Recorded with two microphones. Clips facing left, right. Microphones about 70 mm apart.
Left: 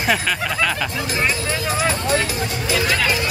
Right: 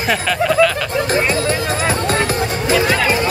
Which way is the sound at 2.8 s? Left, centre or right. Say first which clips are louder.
Right 4 dB; right.